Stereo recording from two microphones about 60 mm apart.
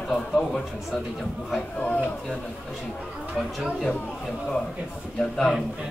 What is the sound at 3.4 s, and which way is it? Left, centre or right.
Speech, centre.